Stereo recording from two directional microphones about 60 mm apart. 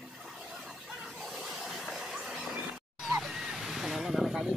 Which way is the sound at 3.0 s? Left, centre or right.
Centre.